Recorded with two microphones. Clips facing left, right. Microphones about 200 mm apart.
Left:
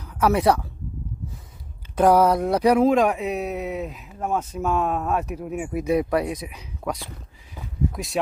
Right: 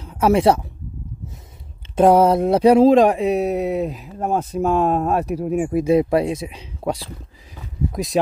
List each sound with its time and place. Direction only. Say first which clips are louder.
0.0 s speech: right 4 dB; 25° right (ahead or behind)
2.0 s speech: right 4 dB; 25° right (ahead or behind)